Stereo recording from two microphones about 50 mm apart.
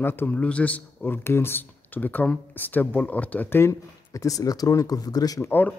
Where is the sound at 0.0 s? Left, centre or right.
Left.